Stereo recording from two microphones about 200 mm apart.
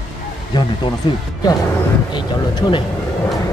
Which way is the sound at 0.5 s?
20° left (ahead or behind).